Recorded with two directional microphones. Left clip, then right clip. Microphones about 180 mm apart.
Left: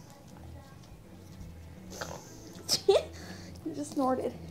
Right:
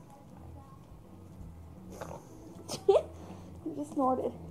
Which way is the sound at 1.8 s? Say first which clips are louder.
Left 3 dB; 10° left (ahead or behind).